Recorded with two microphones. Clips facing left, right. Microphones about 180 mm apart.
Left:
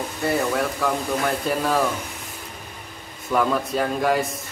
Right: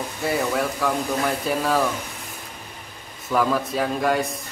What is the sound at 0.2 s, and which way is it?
Speech, centre (ahead or behind).